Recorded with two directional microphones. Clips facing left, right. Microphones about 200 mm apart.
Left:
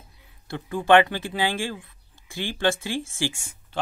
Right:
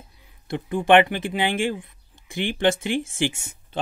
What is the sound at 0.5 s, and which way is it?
Speech, 20° right (ahead or behind).